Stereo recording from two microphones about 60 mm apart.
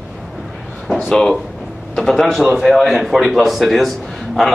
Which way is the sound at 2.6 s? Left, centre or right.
Centre.